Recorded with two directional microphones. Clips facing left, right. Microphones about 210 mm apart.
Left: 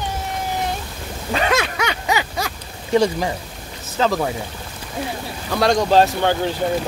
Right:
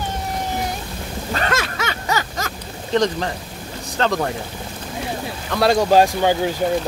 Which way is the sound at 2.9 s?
10° left (ahead or behind).